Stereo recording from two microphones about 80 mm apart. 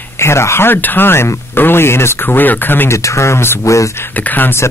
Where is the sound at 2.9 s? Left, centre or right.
Left.